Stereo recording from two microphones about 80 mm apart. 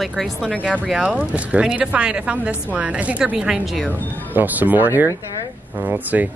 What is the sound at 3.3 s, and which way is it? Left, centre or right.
Speech, centre.